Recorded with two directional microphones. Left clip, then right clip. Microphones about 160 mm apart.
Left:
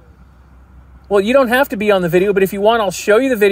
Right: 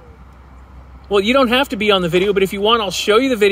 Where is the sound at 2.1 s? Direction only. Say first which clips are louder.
Left 2 dB; 25° right (ahead or behind).